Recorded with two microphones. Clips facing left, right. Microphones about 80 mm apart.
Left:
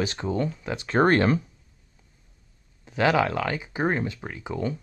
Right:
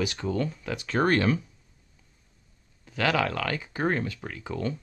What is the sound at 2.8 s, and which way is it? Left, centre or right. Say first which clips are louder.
Speech: left 4 dB; left.